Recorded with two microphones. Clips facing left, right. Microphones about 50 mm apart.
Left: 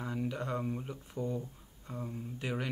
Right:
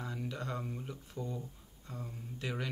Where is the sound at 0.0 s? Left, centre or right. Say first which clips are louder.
Left 4 dB; centre.